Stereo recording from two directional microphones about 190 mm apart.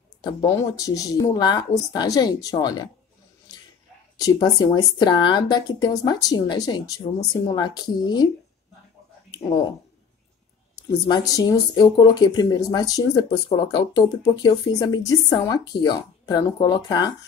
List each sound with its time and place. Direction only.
0.2 s speech: 20° left (ahead or behind)
4.2 s speech: 20° left (ahead or behind)
9.3 s speech: 25° left (ahead or behind)
10.9 s speech: 20° left (ahead or behind)